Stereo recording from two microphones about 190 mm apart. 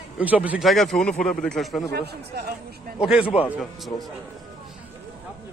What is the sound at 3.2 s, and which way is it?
Speech, 30° left (ahead or behind).